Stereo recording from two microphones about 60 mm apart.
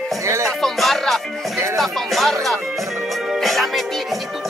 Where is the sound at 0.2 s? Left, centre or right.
Right.